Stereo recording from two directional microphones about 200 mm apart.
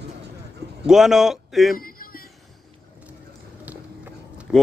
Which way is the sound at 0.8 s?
Centre (ahead or behind).